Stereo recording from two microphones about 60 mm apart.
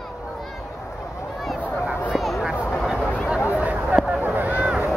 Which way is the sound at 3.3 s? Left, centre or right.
Right.